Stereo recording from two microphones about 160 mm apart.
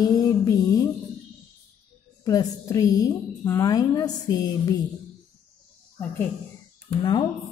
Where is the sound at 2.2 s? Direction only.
20° left (ahead or behind).